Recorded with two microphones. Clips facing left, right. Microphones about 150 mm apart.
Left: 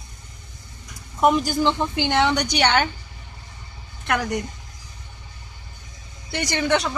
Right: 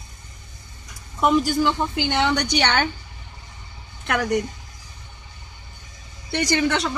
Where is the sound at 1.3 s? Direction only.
20° left (ahead or behind).